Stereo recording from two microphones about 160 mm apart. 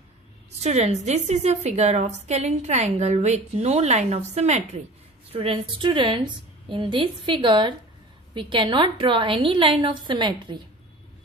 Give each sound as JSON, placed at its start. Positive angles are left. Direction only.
{"t": 0.6, "sound": "a woman's voice", "side_deg": -45}